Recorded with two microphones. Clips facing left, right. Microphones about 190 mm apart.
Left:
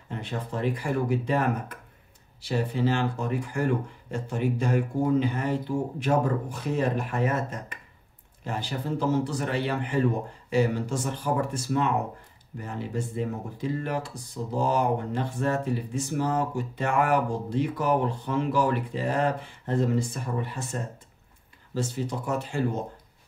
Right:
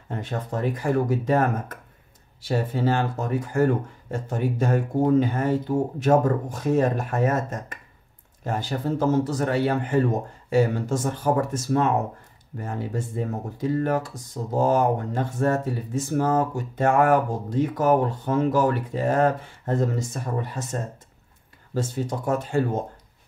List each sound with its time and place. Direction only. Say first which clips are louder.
0.1 s speech: right 3 dB; 45° right (ahead or behind)